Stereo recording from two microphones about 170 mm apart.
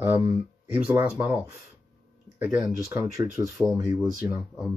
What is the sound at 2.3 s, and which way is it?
Speech, 10° right (ahead or behind).